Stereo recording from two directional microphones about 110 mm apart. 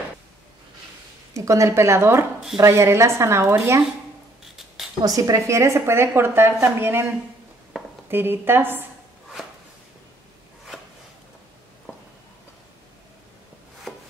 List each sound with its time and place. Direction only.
1.3 s a woman's voice: 30° right (ahead or behind)
5.0 s a woman's voice: 30° right (ahead or behind)
8.1 s a woman's voice: 20° right (ahead or behind)